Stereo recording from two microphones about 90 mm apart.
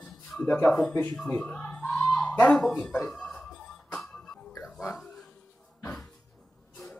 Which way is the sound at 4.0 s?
10° left (ahead or behind).